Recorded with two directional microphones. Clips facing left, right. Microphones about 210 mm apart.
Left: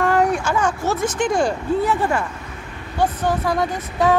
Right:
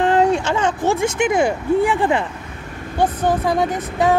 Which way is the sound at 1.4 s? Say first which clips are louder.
Right 3 dB; 15° right (ahead or behind).